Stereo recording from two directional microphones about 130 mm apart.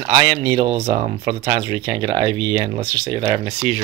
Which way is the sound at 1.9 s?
45° right (ahead or behind).